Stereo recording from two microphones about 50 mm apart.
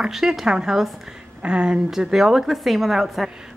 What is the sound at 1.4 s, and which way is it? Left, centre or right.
Speech, right.